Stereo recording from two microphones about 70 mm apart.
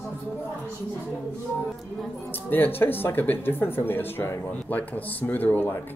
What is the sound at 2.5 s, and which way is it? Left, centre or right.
Speech, left.